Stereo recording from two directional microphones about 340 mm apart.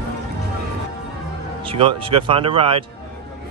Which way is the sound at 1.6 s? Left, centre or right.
Centre.